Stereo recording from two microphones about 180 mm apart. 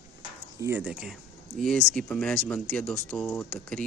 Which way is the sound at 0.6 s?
10° right (ahead or behind).